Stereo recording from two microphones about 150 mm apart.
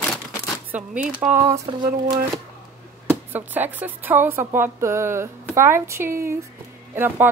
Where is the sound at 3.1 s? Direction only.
10° right (ahead or behind).